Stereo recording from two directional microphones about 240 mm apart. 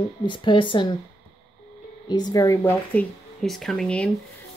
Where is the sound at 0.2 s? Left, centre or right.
Centre.